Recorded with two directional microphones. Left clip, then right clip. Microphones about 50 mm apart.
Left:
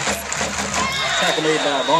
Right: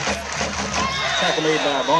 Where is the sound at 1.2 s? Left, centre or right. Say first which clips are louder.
Left 1 dB; centre.